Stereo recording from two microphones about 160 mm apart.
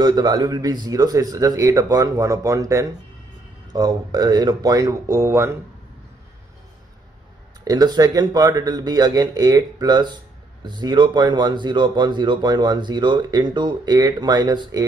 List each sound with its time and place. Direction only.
0.0 s speech: 25° right (ahead or behind)
7.6 s speech: 25° right (ahead or behind)